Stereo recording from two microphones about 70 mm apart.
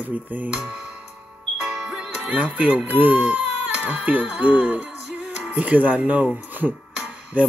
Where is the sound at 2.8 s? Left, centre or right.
Right.